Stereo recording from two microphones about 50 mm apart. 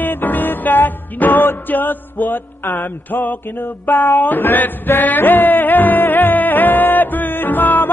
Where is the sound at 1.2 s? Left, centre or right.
Left.